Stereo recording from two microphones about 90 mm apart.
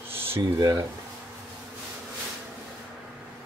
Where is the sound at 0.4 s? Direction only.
45° right (ahead or behind).